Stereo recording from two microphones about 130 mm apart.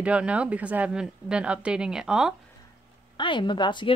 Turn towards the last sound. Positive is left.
turn(degrees=35)  # may be behind; listen again after turning